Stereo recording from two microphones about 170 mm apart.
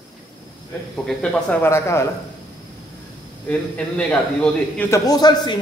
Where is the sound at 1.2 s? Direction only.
5° left (ahead or behind).